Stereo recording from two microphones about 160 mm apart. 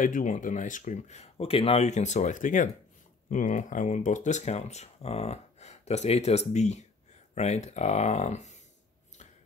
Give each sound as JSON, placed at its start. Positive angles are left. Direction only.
{"t": 0.0, "sound": "speech", "side_deg": 55}